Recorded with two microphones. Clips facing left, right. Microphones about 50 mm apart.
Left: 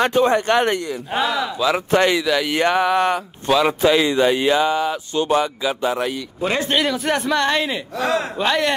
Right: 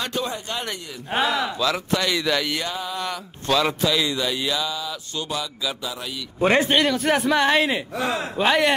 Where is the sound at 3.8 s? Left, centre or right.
Left.